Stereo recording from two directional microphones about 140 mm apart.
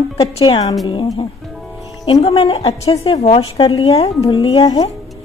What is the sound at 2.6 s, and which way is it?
A woman's voice, 50° left (ahead or behind).